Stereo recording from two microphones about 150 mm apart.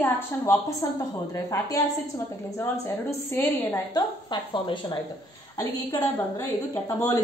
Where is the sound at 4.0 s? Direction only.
30° left (ahead or behind).